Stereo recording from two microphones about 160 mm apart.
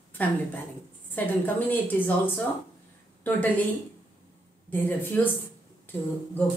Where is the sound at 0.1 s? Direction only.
10° left (ahead or behind).